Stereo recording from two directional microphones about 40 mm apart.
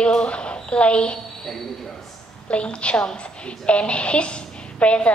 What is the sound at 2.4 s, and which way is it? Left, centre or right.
A woman's voice, left.